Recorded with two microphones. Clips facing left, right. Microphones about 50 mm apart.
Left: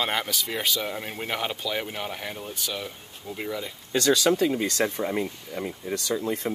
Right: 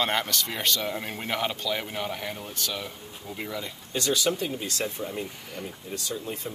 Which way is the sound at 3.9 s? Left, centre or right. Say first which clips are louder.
Left 5 dB; left.